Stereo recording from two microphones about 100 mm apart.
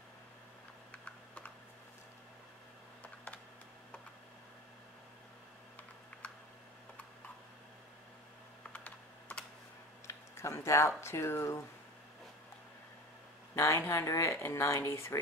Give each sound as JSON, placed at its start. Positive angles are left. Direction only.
{"t": 0.9, "sound": "typing", "side_deg": 15}
{"t": 8.7, "sound": "computer keyboard", "side_deg": 15}
{"t": 10.0, "sound": "speech", "side_deg": 25}
{"t": 13.6, "sound": "speech", "side_deg": 30}